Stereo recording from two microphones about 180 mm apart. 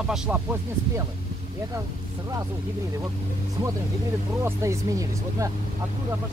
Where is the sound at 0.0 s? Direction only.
5° right (ahead or behind).